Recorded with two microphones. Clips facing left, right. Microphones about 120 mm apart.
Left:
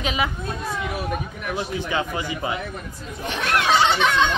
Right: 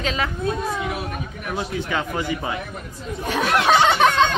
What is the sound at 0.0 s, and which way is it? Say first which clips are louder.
Speech: even; 15° left (ahead or behind).